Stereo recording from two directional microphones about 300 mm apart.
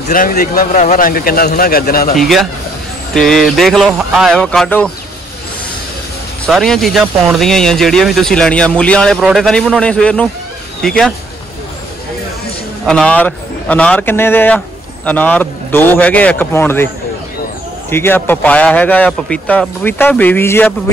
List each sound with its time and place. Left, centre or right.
0.1 s a man's voice: left
2.1 s speech: centre
6.4 s speech: centre
12.8 s speech: centre